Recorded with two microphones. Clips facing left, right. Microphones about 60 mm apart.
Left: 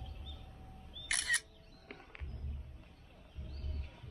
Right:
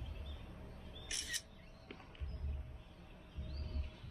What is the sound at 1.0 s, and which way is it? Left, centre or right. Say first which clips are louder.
Music: left 12 dB; left.